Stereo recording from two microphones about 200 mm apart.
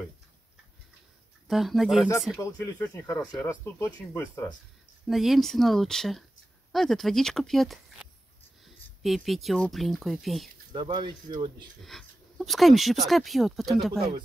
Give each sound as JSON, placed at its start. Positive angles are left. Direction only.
{"t": 1.5, "sound": "speech", "side_deg": 0}
{"t": 2.4, "sound": "speech", "side_deg": 15}
{"t": 5.0, "sound": "speech", "side_deg": 0}
{"t": 10.7, "sound": "speech", "side_deg": -20}
{"t": 11.8, "sound": "speech", "side_deg": 0}